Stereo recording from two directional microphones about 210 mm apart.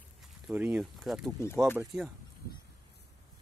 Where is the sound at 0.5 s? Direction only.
5° right (ahead or behind).